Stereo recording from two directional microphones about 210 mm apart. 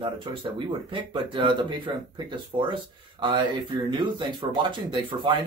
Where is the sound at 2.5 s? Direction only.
25° right (ahead or behind).